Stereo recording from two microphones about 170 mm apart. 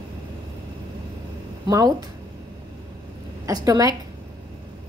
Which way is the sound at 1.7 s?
20° right (ahead or behind).